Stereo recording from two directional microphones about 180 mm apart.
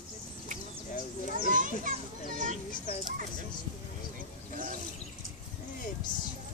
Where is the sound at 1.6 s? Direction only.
45° right (ahead or behind).